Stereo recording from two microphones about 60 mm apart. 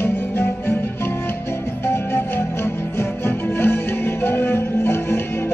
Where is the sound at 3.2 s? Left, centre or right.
Left.